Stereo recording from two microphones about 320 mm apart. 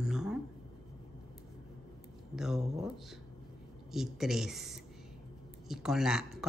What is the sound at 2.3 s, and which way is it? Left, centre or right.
Speech, centre.